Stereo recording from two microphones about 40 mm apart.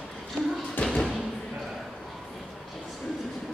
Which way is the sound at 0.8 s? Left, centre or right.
Centre.